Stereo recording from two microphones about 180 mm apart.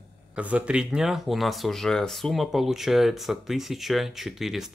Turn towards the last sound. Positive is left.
turn(degrees=0)  # may be behind; listen again after turning